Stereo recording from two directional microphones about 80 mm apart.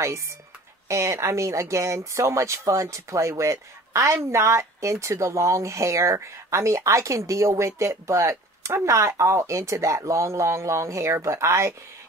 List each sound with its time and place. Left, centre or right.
0.8 s speech: right